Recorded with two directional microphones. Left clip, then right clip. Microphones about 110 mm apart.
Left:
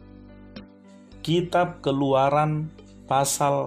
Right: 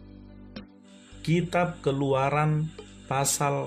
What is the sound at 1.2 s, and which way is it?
A man's voice, 35° left (ahead or behind).